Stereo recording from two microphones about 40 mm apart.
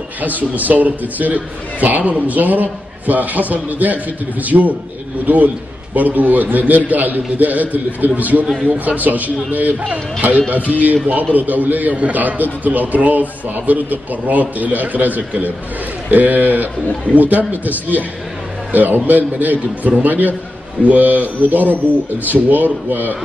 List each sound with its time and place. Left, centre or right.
0.2 s a man's voice: right